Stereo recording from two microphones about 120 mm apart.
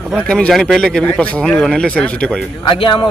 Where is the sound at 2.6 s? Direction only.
45° left (ahead or behind).